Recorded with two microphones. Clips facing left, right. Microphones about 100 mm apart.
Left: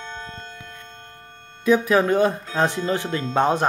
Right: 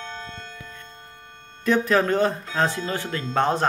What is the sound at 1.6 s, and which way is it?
Speech, 10° left (ahead or behind).